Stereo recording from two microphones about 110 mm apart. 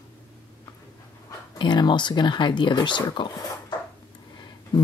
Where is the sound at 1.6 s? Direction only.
45° left (ahead or behind).